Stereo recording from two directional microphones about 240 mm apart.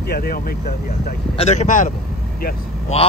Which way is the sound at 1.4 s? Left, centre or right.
Left.